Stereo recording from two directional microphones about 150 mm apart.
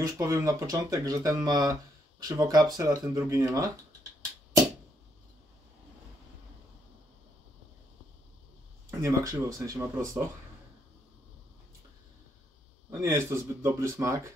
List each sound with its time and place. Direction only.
0.2 s speech: 20° right (ahead or behind)
9.0 s speech: 20° right (ahead or behind)
13.0 s speech: 15° right (ahead or behind)